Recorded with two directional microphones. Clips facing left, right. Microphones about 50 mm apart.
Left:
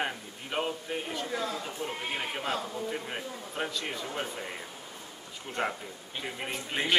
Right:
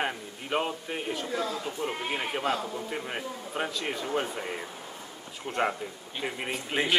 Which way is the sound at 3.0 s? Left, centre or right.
Centre.